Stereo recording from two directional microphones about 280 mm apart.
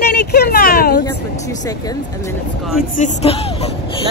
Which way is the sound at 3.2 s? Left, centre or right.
Centre.